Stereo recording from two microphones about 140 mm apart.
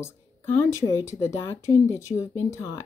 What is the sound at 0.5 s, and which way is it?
Speech, 20° left (ahead or behind).